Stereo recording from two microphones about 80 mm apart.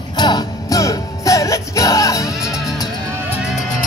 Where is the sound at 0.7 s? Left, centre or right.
Left.